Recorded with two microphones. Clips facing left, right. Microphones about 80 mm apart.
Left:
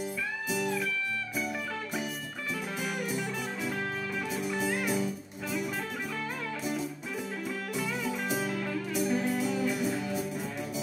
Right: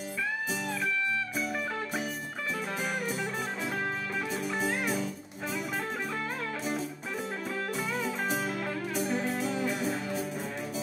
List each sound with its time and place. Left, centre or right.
8.9 s music: right